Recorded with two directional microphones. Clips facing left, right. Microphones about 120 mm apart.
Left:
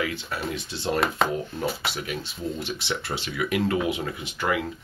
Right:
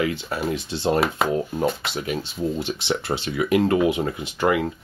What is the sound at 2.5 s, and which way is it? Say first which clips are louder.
Speech: right 5 dB; 30° right (ahead or behind).